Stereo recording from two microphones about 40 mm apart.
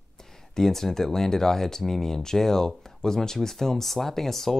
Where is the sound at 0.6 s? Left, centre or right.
Centre.